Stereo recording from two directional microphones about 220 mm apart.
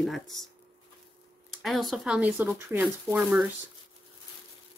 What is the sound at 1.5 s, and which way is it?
Speech, centre (ahead or behind).